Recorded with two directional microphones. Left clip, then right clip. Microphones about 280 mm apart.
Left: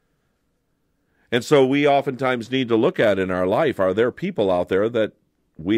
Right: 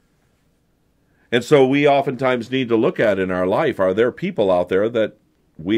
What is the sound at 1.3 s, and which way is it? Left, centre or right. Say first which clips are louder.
Speech: right 2 dB; left.